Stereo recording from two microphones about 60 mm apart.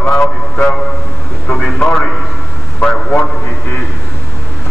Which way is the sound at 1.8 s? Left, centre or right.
Centre.